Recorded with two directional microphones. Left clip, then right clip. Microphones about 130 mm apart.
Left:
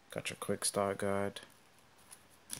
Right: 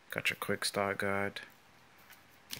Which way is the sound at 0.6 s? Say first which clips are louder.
Right 1 dB; 15° left (ahead or behind).